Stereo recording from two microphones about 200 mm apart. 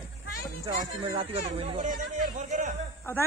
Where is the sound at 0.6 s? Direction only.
20° right (ahead or behind); by 2.8 s 40° right (ahead or behind).